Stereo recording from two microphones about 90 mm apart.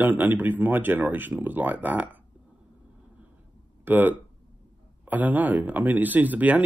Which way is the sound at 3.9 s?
20° right (ahead or behind).